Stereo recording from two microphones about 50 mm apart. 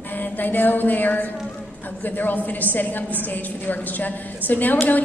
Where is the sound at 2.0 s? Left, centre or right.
Left.